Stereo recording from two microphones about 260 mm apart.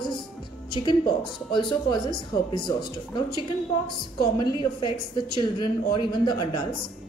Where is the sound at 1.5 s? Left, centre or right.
Centre.